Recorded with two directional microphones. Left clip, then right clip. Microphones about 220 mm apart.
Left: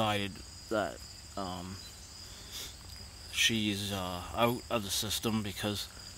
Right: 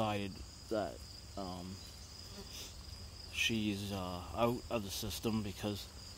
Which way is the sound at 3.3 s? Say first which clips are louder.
Left 6 dB; 10° left (ahead or behind).